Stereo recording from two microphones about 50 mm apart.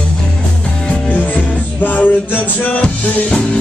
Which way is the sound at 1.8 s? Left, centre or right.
Left.